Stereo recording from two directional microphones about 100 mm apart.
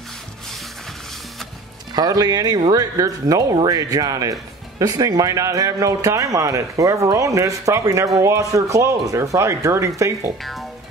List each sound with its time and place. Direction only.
2.0 s speech: 40° right (ahead or behind)